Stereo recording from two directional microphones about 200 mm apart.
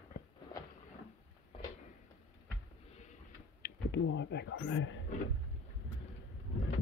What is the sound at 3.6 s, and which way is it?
Speech, 60° left (ahead or behind).